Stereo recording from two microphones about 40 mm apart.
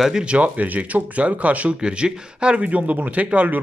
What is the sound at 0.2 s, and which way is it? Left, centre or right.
Speech, right.